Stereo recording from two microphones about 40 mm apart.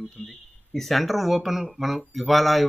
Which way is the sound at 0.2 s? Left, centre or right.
Centre.